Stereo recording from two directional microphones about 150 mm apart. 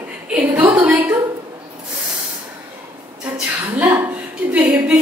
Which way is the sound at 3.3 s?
10° right (ahead or behind).